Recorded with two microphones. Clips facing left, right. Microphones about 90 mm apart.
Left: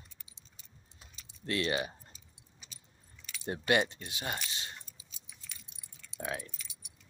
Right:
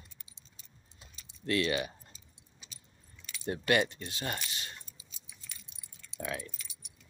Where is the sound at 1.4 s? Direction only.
25° left (ahead or behind).